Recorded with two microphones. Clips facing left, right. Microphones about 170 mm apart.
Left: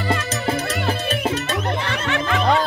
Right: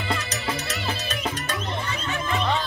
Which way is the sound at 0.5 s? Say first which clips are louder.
Left 7 dB; 55° left (ahead or behind).